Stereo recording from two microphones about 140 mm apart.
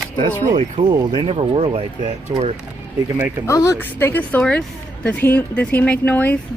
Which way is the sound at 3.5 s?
20° left (ahead or behind).